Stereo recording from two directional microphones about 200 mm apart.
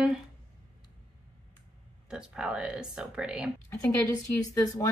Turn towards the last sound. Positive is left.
turn(degrees=20)  # may be behind; listen again after turning